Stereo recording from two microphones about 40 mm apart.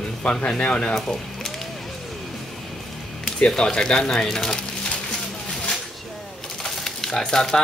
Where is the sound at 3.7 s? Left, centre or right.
Centre.